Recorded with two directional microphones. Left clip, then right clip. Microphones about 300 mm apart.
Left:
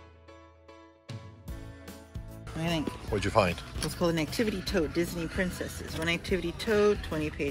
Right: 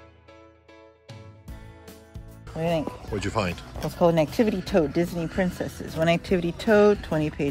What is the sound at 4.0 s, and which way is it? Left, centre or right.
Speech, right.